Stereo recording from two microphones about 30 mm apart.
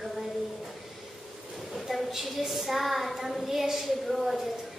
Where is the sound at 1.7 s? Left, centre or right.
Centre.